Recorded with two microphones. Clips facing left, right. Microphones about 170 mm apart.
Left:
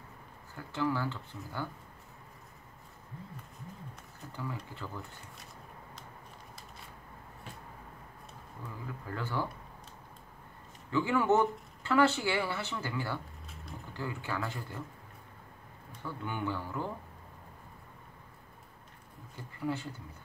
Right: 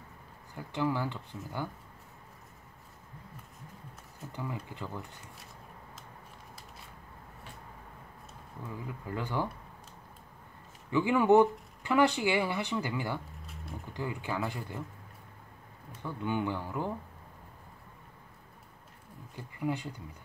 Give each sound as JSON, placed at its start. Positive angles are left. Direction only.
{"t": 0.6, "sound": "speech", "side_deg": -15}
{"t": 4.3, "sound": "speech", "side_deg": -20}
{"t": 8.8, "sound": "speech", "side_deg": -15}
{"t": 10.9, "sound": "speech", "side_deg": -15}
{"t": 16.0, "sound": "speech", "side_deg": -15}
{"t": 19.6, "sound": "speech", "side_deg": -15}